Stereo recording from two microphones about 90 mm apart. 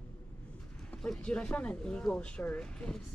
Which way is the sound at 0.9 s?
10° left (ahead or behind).